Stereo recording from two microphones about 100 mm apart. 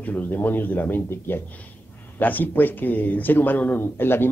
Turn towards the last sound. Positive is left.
turn(degrees=20)  # may be behind; listen again after turning